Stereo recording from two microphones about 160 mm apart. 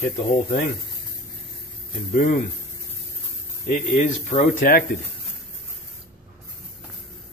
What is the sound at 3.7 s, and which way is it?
Speech, 50° left (ahead or behind).